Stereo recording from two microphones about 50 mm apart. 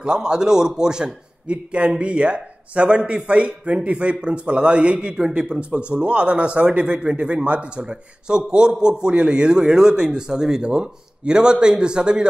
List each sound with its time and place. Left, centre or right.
0.0 s a man's voice: centre